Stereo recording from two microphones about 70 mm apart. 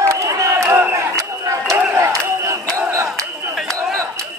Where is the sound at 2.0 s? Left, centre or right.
Right.